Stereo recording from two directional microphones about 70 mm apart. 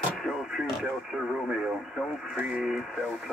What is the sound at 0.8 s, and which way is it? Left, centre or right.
Radio, centre.